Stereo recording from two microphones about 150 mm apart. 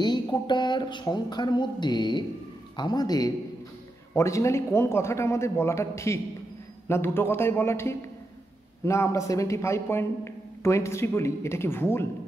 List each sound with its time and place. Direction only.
0.0 s speech: 30° left (ahead or behind)